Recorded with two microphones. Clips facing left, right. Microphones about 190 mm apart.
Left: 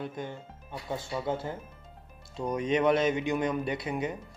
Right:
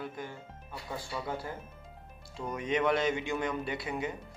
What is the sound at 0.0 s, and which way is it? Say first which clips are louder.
Speech: left 3 dB; 25° left (ahead or behind).